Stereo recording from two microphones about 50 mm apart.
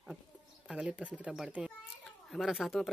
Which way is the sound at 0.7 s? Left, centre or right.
Centre.